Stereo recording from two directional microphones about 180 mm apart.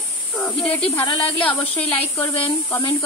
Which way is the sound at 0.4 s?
5° left (ahead or behind).